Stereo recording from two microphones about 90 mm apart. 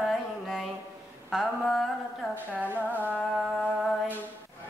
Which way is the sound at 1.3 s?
Centre (ahead or behind).